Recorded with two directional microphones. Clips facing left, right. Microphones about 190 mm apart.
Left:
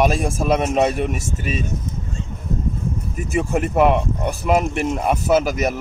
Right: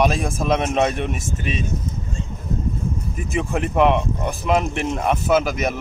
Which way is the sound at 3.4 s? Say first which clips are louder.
Left 2 dB; 5° left (ahead or behind).